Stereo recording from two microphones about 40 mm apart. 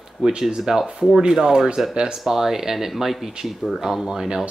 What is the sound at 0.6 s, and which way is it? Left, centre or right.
Speech, centre.